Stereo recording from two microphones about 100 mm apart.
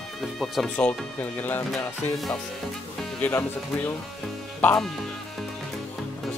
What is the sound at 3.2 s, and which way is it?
Speech, 20° left (ahead or behind).